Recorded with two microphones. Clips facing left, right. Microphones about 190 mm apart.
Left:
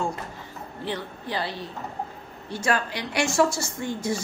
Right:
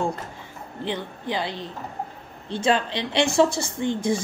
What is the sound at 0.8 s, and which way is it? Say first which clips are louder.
A woman's voice: right 3 dB; 20° right (ahead or behind).